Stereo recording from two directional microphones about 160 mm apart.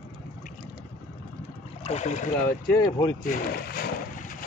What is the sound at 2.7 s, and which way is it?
Speech, 20° left (ahead or behind).